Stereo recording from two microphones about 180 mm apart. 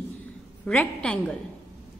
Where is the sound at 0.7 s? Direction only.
5° left (ahead or behind).